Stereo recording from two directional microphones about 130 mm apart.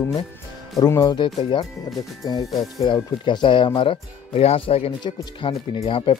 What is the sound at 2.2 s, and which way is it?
Speech, 30° left (ahead or behind).